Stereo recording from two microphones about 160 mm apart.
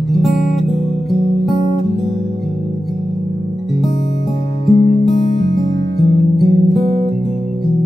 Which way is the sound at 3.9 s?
40° left (ahead or behind).